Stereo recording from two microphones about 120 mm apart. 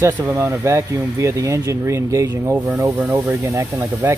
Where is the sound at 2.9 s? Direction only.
15° right (ahead or behind).